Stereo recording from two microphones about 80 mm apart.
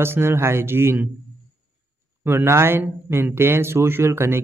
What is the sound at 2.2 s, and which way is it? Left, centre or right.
A man's voice, right.